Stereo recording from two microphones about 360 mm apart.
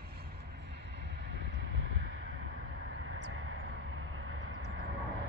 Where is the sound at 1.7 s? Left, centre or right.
Right.